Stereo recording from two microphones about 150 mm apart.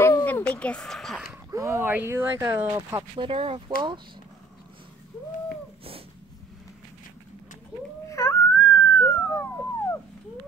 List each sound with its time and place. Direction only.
0.0 s speech: 15° left (ahead or behind)
1.5 s speech: 20° right (ahead or behind)
3.3 s speech: 35° right (ahead or behind)
8.1 s a sound: 20° left (ahead or behind)